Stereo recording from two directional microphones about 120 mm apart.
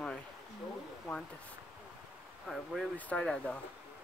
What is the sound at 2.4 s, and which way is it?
Speech, 5° left (ahead or behind).